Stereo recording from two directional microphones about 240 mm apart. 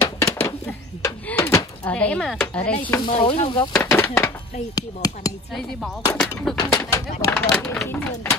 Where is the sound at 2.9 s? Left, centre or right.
Left.